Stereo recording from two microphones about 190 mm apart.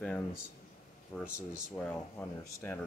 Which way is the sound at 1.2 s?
5° right (ahead or behind).